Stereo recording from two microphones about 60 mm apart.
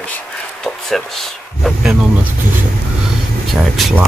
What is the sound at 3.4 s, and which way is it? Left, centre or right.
Speech, centre.